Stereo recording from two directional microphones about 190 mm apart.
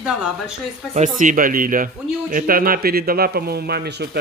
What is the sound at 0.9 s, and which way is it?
Speech, 40° right (ahead or behind).